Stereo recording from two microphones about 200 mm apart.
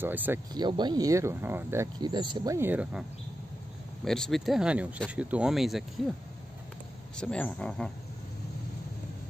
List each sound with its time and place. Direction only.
0.0 s speech: 10° right (ahead or behind)
0.6 s speech: 20° right (ahead or behind); by 5.9 s centre (ahead or behind)
7.2 s speech: 5° left (ahead or behind)